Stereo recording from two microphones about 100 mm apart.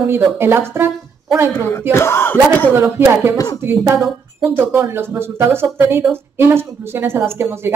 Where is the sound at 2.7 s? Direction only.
20° right (ahead or behind).